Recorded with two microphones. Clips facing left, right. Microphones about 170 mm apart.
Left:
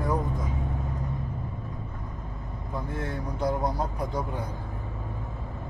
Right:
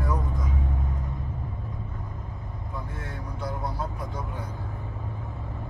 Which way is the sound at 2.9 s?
40° left (ahead or behind).